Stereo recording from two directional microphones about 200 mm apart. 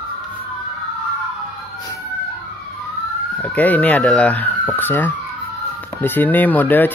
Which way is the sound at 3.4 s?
10° left (ahead or behind).